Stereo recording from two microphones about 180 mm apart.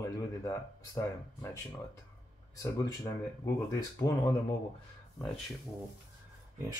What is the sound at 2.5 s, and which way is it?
Speech, 20° left (ahead or behind).